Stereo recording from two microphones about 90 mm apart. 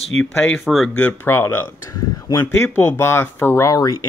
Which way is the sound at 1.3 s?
30° left (ahead or behind).